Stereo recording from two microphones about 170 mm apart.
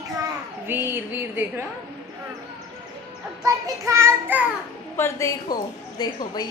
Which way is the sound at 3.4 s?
20° right (ahead or behind).